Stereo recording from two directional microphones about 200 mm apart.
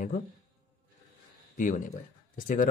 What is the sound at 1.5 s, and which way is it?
Speech, 40° left (ahead or behind).